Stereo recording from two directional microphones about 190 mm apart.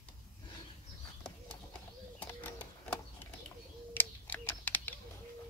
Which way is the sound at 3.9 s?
10° left (ahead or behind).